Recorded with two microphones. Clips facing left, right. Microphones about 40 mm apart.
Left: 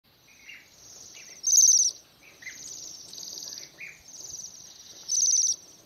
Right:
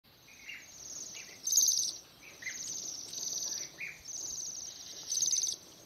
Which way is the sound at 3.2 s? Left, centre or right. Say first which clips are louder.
Right 1 dB; right.